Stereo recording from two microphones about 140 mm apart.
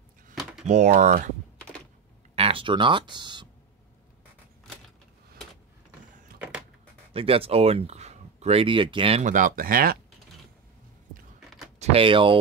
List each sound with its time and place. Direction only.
0.3 s a sound: centre (ahead or behind)
0.7 s speech: 60° right (ahead or behind)
2.3 s speech: 40° right (ahead or behind)
7.2 s speech: 40° right (ahead or behind)
9.2 s speech: 65° right (ahead or behind); by 9.9 s 90° right
11.8 s speech: 40° right (ahead or behind)